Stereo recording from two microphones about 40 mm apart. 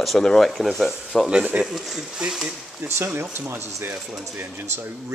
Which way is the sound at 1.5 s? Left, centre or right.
Right.